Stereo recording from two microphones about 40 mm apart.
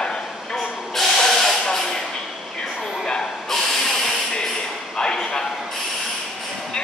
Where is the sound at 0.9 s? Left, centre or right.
Centre.